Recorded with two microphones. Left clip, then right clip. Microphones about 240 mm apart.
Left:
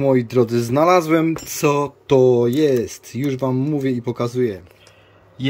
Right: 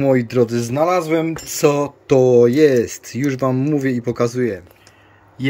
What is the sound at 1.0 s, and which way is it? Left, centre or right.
Speech, centre.